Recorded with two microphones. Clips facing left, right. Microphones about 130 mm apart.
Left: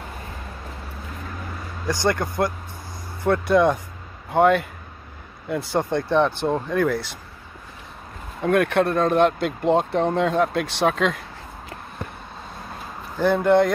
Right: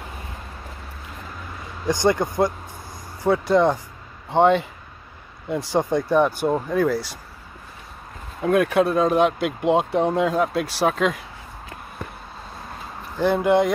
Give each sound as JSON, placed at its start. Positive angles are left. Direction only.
{"t": 1.9, "sound": "speech", "side_deg": -15}
{"t": 3.3, "sound": "speech", "side_deg": -5}
{"t": 5.6, "sound": "speech", "side_deg": -15}
{"t": 8.4, "sound": "speech", "side_deg": 0}
{"t": 13.2, "sound": "speech", "side_deg": 0}